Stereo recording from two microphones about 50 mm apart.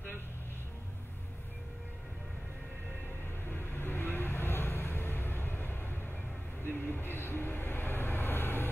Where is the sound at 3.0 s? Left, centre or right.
Left.